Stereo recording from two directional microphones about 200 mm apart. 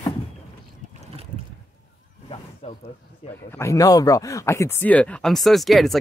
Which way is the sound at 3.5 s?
15° left (ahead or behind).